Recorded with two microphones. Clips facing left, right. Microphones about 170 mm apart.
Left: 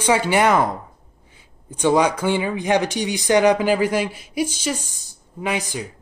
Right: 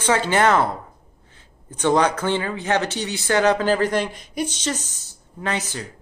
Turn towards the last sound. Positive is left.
turn(degrees=15)  # may be behind; listen again after turning